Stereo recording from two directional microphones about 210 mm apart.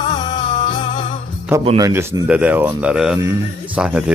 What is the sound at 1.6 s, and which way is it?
Speech, 25° right (ahead or behind).